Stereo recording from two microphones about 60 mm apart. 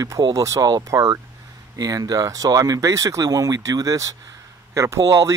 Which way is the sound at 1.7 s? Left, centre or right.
Right.